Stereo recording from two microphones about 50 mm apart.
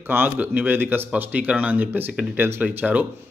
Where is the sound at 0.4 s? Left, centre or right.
Right.